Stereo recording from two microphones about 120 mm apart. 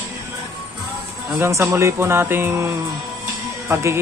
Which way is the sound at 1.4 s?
25° right (ahead or behind).